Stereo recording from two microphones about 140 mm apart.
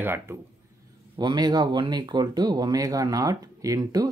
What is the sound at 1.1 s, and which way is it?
Speech, 30° right (ahead or behind).